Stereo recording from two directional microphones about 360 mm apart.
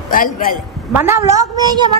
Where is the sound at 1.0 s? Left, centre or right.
Centre.